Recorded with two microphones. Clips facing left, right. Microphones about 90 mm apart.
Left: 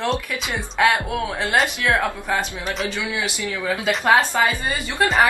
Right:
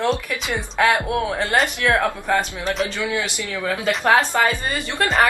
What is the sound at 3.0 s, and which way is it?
Speech, 20° left (ahead or behind).